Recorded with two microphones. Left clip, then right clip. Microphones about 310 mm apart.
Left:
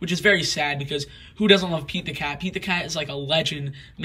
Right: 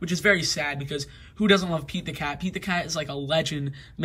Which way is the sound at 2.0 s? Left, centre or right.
Right.